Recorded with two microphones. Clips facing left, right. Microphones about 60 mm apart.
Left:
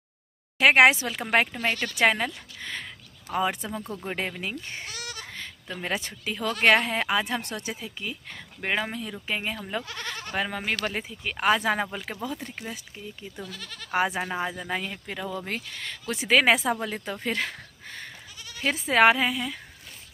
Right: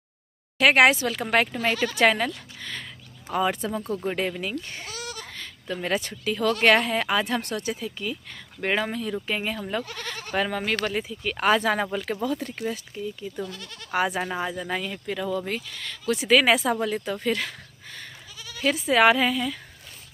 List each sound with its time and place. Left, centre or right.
0.6 s speech: left
1.5 s speech: centre
2.0 s speech: centre
3.3 s speech: centre
5.7 s speech: centre
6.0 s speech: left
6.4 s speech: centre
8.5 s speech: centre
10.9 s speech: left
11.3 s speech: centre
15.4 s speech: left
19.1 s speech: centre